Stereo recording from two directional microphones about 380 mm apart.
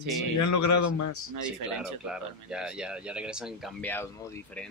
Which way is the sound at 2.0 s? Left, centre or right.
Centre.